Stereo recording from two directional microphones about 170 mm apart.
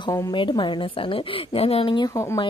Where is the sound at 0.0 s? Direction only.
25° left (ahead or behind).